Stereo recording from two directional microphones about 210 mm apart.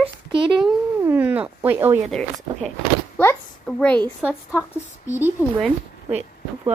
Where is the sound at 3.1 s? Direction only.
5° left (ahead or behind).